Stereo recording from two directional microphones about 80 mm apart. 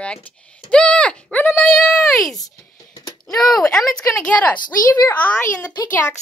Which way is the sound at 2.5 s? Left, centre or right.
Left.